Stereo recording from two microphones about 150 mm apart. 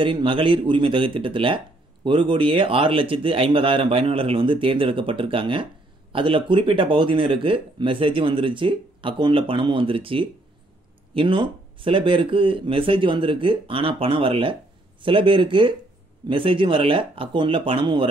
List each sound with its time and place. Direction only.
0.0 s speech: 35° right (ahead or behind)